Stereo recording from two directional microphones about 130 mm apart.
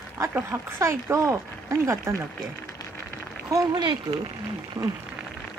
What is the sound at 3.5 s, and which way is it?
Speech, 30° right (ahead or behind).